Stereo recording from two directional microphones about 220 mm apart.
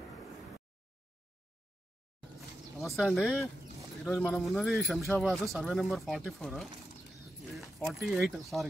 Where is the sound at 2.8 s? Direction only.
Centre (ahead or behind).